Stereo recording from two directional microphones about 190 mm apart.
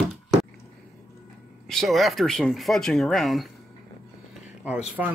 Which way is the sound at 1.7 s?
Centre (ahead or behind).